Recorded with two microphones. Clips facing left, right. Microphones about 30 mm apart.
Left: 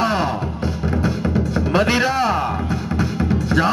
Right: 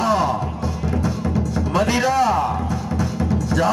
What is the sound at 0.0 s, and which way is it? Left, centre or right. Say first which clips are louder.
Music: right 1 dB; left.